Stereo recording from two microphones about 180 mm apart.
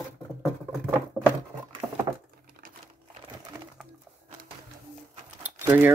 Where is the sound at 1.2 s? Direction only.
15° right (ahead or behind).